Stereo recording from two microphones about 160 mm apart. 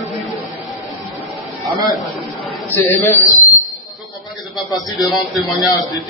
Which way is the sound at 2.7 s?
15° left (ahead or behind).